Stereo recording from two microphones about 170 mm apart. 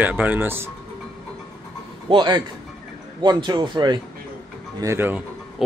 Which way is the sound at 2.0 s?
30° right (ahead or behind).